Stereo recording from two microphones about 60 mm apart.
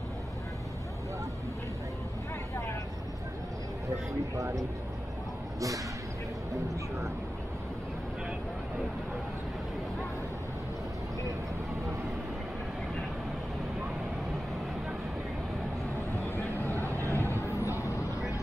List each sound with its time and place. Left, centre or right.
16.8 s vehicle: right
17.2 s vehicle: left